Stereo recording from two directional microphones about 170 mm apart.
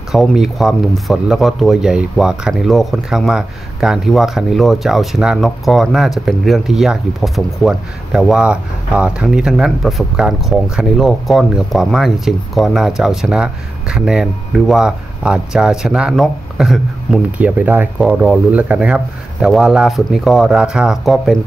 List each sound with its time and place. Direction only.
0.1 s speech: centre (ahead or behind)